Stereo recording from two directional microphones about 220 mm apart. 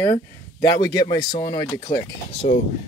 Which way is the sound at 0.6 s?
15° left (ahead or behind).